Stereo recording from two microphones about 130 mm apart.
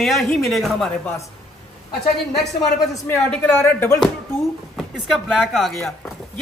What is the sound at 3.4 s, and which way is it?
Speech, 15° left (ahead or behind).